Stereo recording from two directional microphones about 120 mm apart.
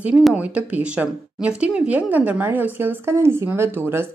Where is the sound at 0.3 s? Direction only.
10° right (ahead or behind).